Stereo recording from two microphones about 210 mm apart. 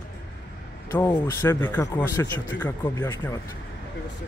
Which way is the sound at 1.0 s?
15° left (ahead or behind).